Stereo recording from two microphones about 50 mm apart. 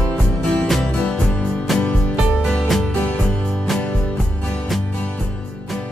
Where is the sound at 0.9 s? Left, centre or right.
Centre.